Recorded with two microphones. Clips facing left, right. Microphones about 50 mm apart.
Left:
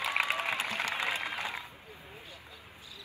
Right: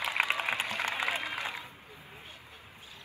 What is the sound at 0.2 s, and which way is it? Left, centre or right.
Applause, right.